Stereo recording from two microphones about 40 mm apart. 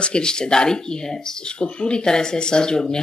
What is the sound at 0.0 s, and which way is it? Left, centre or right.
Speech, left.